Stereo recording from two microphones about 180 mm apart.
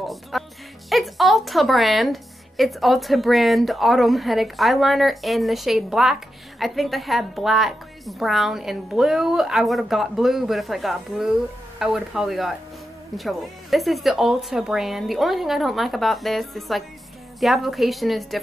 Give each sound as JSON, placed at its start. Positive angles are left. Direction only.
{"t": 0.0, "sound": "speech", "side_deg": 0}